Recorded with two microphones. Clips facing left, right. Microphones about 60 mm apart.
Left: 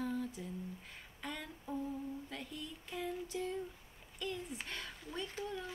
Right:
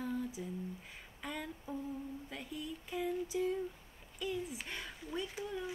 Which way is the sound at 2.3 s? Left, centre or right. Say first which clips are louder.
Right 3 dB; centre.